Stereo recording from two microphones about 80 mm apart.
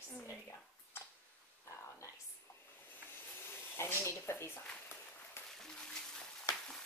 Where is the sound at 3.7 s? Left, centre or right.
Left.